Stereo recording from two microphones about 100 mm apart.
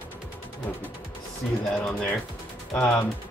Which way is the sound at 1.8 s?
10° left (ahead or behind).